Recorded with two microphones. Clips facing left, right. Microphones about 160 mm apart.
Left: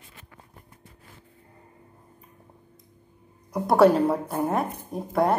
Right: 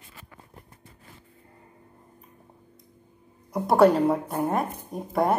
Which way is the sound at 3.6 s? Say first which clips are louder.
Even; centre (ahead or behind).